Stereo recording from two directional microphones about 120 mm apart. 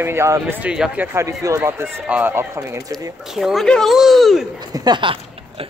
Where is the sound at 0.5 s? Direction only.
10° right (ahead or behind).